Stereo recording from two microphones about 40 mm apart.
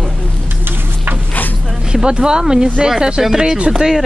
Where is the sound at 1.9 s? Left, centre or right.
Centre.